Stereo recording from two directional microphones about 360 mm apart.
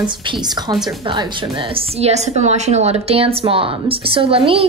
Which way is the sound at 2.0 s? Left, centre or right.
Centre.